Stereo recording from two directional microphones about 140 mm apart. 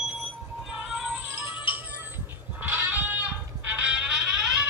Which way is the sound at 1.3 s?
15° right (ahead or behind).